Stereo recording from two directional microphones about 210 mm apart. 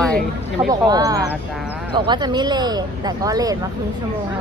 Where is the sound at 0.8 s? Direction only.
20° right (ahead or behind).